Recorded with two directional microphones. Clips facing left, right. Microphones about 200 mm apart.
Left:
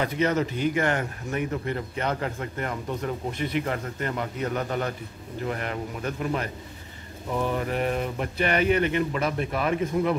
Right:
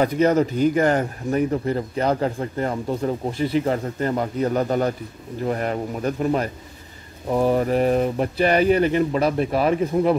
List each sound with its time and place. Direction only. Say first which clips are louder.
0.0 s a man's voice: right 7 dB; 40° right (ahead or behind)